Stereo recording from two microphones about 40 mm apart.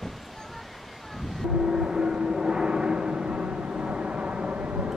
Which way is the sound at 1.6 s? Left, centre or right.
Centre.